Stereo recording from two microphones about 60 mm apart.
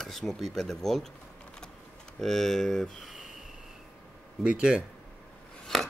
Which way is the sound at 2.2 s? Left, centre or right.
Centre.